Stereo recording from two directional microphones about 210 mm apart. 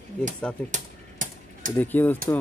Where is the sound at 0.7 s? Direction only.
35° right (ahead or behind).